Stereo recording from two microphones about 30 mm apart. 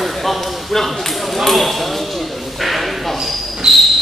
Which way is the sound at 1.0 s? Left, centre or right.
Centre.